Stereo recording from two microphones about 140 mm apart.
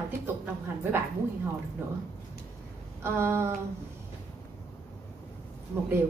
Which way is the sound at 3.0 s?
15° right (ahead or behind).